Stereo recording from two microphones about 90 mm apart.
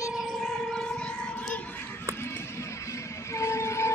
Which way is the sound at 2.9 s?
35° left (ahead or behind).